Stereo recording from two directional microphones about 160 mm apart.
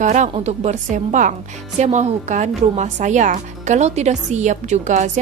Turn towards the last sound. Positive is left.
turn(degrees=-50)  # may be behind; listen again after turning